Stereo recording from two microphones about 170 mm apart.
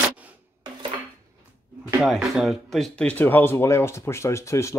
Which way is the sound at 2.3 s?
Centre (ahead or behind).